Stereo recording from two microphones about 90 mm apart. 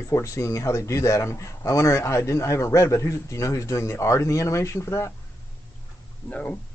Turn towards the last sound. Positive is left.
turn(degrees=15)  # may be behind; listen again after turning